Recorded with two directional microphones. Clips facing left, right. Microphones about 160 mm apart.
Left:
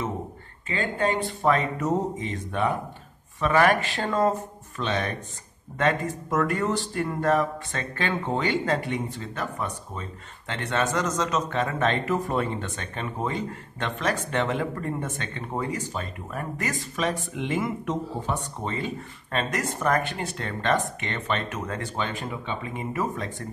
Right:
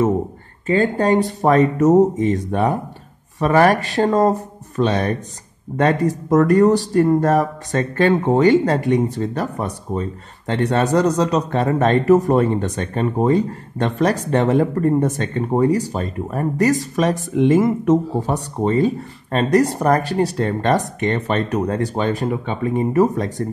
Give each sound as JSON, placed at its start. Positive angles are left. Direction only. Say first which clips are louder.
{"t": 0.7, "sound": "speech", "louder": "right 10 dB", "side_deg": -40}